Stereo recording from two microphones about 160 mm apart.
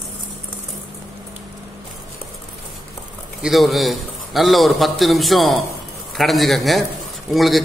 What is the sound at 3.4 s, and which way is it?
A man's voice, centre (ahead or behind).